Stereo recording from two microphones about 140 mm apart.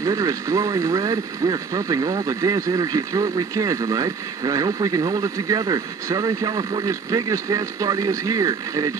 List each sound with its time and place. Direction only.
0.0 s speech: 25° right (ahead or behind)